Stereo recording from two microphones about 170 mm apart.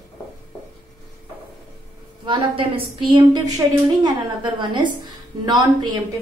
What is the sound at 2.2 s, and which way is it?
A woman's voice, 30° right (ahead or behind).